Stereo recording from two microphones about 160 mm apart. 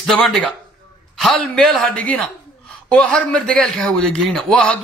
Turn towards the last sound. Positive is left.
turn(degrees=10)  # may be behind; listen again after turning